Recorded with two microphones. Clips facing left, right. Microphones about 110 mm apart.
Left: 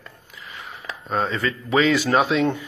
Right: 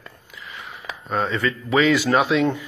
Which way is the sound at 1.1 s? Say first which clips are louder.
Right 1 dB; 30° left (ahead or behind).